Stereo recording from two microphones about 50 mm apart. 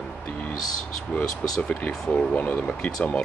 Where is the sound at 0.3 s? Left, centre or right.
Left.